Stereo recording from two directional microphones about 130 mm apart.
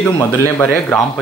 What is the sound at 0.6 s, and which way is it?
Speech, 15° left (ahead or behind).